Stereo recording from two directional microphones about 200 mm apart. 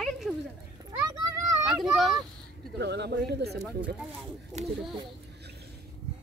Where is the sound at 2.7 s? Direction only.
60° right (ahead or behind).